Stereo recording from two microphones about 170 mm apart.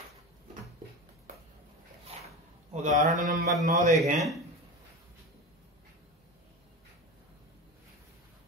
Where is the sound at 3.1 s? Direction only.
50° right (ahead or behind).